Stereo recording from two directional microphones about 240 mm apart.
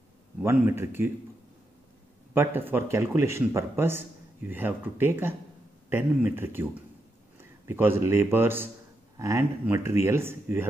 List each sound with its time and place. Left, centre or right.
0.4 s a man's voice: centre
2.3 s a man's voice: centre